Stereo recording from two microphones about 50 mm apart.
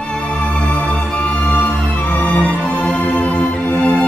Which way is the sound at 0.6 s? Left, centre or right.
Left.